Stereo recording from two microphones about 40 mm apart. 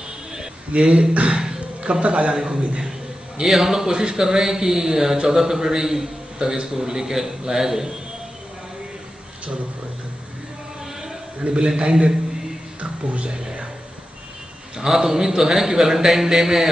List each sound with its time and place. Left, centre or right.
0.3 s a sound: centre
0.9 s speech: right
1.8 s a man's voice: right
2.3 s speech: centre
3.4 s a man's voice: centre
11.4 s a man's voice: right
12.8 s speech: right
13.3 s a man's voice: centre
14.9 s speech: centre